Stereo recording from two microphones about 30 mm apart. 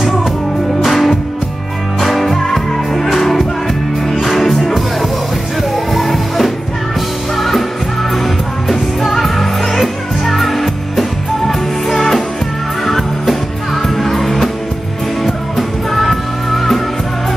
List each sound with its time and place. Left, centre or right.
0.7 s music: centre
5.9 s music: centre
8.6 s music: centre